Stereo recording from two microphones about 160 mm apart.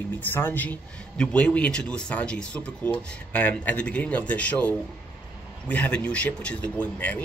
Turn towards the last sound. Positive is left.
turn(degrees=10)  # may be behind; listen again after turning